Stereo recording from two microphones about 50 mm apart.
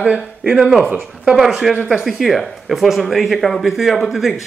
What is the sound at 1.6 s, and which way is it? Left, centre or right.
Speech, centre.